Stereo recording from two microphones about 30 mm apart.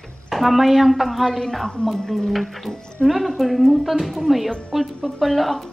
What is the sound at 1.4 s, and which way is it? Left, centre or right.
Speech, centre.